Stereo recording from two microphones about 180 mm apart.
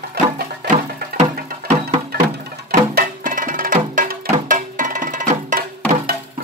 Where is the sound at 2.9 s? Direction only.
50° right (ahead or behind).